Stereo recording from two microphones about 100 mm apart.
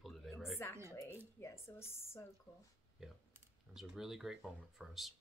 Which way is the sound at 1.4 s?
25° left (ahead or behind).